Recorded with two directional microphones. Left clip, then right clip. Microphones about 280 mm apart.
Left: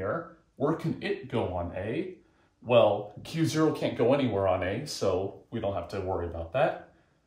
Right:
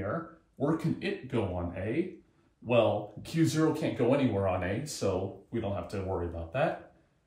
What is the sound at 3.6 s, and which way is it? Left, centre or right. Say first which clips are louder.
Speech: left 6 dB; centre.